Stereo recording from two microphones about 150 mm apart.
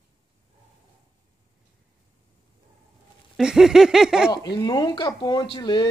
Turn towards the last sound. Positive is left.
turn(degrees=30)  # may be behind; listen again after turning